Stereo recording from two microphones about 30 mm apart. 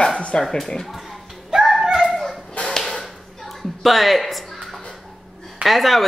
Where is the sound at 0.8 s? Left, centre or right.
Centre.